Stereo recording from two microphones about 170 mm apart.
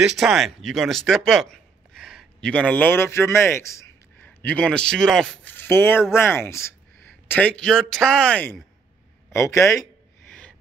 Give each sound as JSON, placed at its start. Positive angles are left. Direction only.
{"t": 0.0, "sound": "a man's voice", "side_deg": 0}
{"t": 9.3, "sound": "speech", "side_deg": 15}